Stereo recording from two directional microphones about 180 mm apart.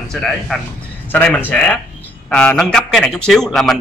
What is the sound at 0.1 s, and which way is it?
A man's voice, centre (ahead or behind).